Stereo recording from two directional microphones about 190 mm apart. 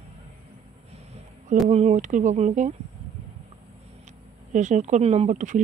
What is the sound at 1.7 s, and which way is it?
Speech, 35° right (ahead or behind).